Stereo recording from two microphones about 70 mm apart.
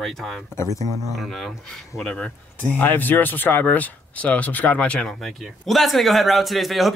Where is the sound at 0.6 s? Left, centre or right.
Left.